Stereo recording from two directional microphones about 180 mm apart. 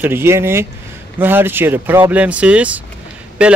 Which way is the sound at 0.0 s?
10° right (ahead or behind).